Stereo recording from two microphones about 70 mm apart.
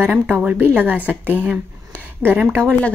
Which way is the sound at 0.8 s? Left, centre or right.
Right.